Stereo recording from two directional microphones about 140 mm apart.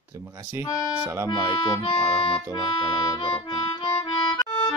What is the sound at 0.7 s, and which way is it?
Speech, 20° left (ahead or behind).